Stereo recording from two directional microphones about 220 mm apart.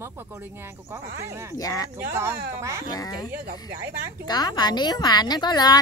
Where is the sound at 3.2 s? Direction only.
45° right (ahead or behind).